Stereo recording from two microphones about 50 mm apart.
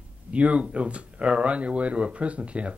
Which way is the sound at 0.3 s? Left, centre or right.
Right.